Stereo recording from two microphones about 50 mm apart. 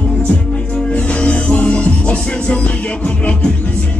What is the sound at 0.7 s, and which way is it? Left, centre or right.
Music, left.